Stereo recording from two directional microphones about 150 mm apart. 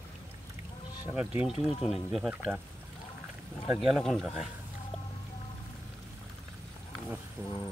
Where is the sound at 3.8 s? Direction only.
5° right (ahead or behind).